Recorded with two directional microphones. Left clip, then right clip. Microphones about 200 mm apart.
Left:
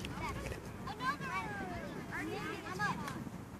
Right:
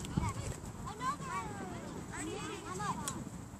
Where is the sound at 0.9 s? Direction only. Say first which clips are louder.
Even; 35° left (ahead or behind).